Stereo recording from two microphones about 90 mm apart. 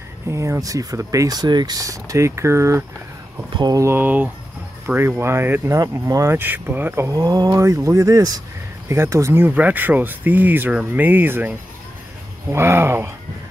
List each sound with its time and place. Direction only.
0.3 s speech: 35° right (ahead or behind)
7.1 s speech: 45° right (ahead or behind)
8.8 s speech: 30° right (ahead or behind)
9.5 s speech: 15° right (ahead or behind)
12.5 s speech: 30° right (ahead or behind)